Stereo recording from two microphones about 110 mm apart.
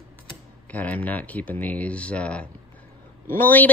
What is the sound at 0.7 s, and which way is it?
Speech, 15° left (ahead or behind).